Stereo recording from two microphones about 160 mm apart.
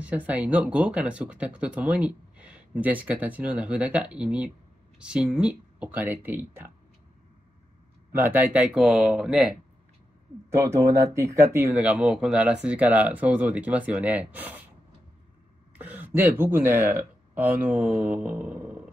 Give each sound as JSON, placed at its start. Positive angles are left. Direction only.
{"t": 0.0, "sound": "speech", "side_deg": -10}
{"t": 8.1, "sound": "speech", "side_deg": -15}
{"t": 10.5, "sound": "speech", "side_deg": -20}
{"t": 11.8, "sound": "speech", "side_deg": -5}
{"t": 15.8, "sound": "speech", "side_deg": -10}